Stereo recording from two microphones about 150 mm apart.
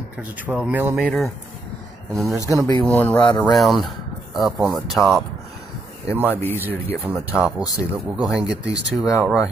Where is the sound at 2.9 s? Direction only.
10° left (ahead or behind).